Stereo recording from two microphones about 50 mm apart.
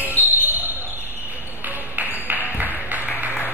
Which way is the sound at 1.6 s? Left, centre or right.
Right.